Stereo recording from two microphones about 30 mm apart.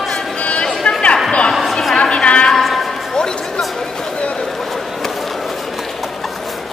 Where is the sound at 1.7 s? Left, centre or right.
Centre.